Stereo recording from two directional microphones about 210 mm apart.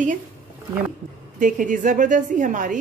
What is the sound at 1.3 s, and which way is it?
A woman's voice, 40° right (ahead or behind).